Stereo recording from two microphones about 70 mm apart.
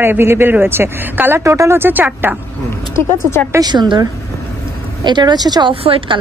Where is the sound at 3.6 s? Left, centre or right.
Right.